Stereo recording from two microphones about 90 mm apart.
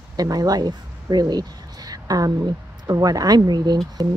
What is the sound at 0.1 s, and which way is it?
Speech, 45° right (ahead or behind).